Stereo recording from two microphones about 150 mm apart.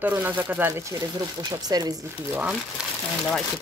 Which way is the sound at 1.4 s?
25° right (ahead or behind).